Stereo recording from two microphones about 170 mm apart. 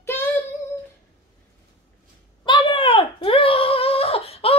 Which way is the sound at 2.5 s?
30° left (ahead or behind).